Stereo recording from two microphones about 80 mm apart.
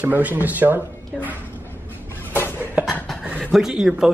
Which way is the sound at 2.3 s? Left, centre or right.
Left.